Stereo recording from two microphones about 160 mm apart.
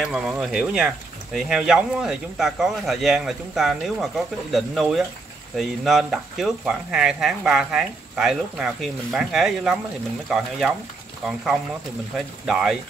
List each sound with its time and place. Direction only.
0.0 s speech: 5° right (ahead or behind)
12.4 s speech: 5° right (ahead or behind)